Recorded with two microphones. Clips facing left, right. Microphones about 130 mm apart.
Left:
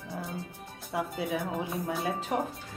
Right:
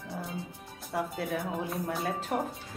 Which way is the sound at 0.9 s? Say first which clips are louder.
Left 1 dB; centre (ahead or behind).